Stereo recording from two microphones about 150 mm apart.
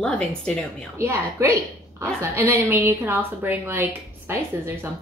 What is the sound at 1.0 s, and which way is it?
A woman's voice, 20° right (ahead or behind).